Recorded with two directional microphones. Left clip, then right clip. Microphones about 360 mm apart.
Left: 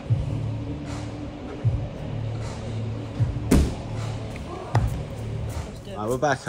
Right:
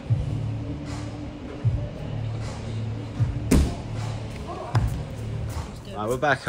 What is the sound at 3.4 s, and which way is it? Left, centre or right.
Music, centre.